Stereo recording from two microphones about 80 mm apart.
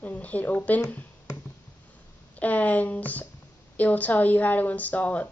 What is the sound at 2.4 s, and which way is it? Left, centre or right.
Speech, centre.